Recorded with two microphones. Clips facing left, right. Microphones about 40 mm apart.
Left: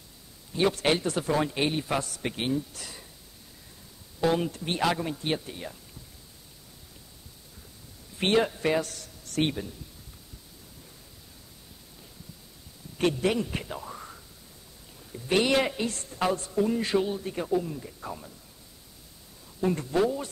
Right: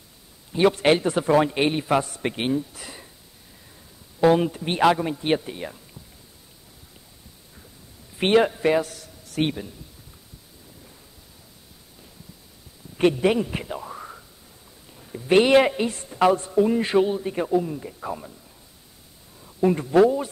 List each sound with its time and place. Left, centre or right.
0.5 s a man's voice: right
2.7 s a sound: right
4.2 s a man's voice: right
4.9 s speech: centre
5.2 s a man's voice: right
8.2 s a man's voice: right
12.9 s a man's voice: right
19.4 s speech: right